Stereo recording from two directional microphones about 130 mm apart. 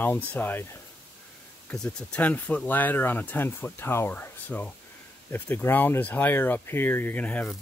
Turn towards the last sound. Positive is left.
turn(degrees=10)  # may be behind; listen again after turning